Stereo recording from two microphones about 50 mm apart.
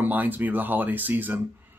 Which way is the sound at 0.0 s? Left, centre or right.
Right.